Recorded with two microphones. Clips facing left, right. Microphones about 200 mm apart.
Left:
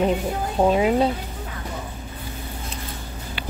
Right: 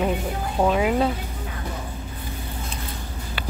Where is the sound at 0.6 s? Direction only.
25° left (ahead or behind).